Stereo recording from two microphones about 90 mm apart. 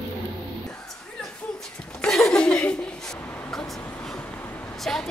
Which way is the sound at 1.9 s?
5° left (ahead or behind).